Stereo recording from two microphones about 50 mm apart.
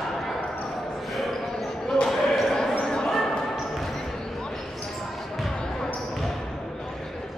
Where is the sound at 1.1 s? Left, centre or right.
Centre.